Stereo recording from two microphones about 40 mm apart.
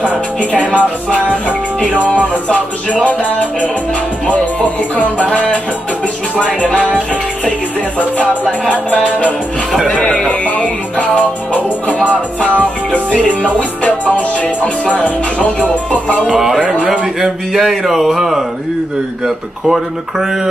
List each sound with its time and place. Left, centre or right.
0.4 s music: left
3.1 s music: left
6.3 s music: left
8.5 s music: left
12.9 s music: left
17.2 s speech: centre